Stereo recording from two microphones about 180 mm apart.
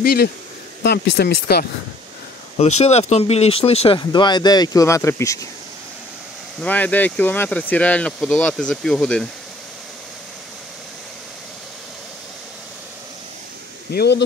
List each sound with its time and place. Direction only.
0.0 s speech: 55° left (ahead or behind)
2.5 s speech: 35° left (ahead or behind); by 5.5 s 15° left (ahead or behind)
6.6 s speech: 10° left (ahead or behind)
13.9 s speech: 65° left (ahead or behind)